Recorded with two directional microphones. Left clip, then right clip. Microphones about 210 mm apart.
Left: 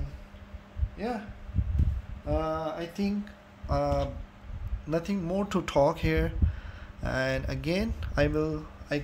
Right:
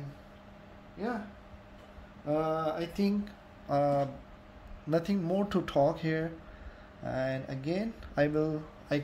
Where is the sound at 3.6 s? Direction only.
5° left (ahead or behind).